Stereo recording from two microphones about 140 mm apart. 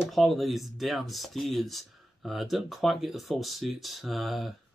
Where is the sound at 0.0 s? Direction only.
Centre (ahead or behind).